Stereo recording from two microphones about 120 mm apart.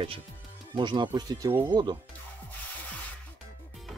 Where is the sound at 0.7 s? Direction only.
40° right (ahead or behind).